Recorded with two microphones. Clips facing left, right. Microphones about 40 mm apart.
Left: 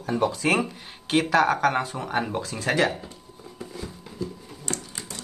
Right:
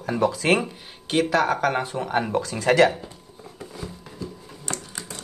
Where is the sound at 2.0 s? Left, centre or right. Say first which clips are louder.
Right 3 dB; centre.